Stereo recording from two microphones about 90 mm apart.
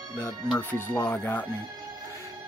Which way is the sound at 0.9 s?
25° left (ahead or behind).